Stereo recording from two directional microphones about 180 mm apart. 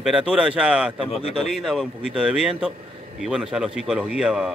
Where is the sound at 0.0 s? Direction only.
5° right (ahead or behind).